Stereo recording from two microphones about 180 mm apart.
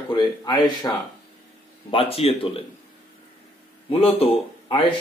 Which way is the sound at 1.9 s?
30° left (ahead or behind).